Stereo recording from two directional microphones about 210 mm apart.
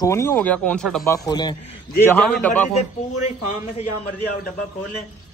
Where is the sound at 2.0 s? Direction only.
10° left (ahead or behind).